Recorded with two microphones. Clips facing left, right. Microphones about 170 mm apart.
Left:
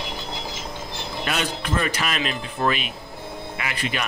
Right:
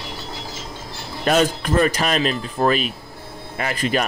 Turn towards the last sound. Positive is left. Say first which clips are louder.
# right 6 dB
turn(degrees=-40)  # may be behind; listen again after turning